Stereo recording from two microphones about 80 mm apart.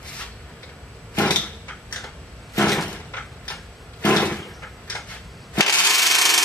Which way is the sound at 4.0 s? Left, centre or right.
Centre.